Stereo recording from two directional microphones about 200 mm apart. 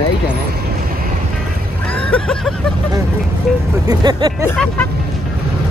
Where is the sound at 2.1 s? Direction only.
5° left (ahead or behind).